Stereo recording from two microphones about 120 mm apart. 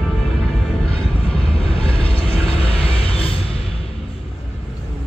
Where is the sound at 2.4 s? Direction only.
50° left (ahead or behind).